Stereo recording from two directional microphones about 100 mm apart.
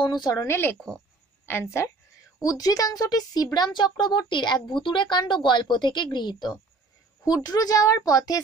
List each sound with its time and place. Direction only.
0.0 s a woman's voice: 45° left (ahead or behind)
0.5 s a woman's voice: 20° left (ahead or behind)
0.7 s a woman's voice: 10° left (ahead or behind)
1.4 s speech: 25° left (ahead or behind)
2.4 s a woman's voice: 35° left (ahead or behind)